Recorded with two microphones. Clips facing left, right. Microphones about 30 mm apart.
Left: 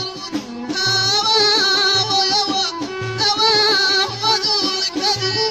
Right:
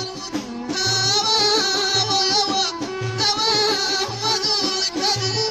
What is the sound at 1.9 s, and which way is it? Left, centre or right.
Music, centre.